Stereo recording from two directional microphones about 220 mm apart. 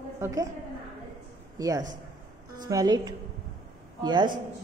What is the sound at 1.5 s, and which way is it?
A man's voice, 15° right (ahead or behind).